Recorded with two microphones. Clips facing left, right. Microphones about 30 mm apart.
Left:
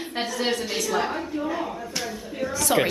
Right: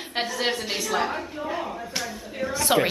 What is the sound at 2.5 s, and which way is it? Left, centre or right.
Speech, right.